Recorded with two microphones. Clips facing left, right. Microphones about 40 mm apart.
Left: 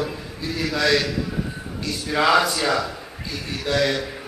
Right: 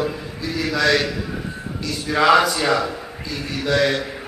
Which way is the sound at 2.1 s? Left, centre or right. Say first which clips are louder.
Right 3 dB; centre.